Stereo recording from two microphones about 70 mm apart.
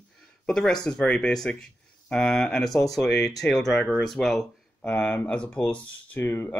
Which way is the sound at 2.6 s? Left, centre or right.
Left.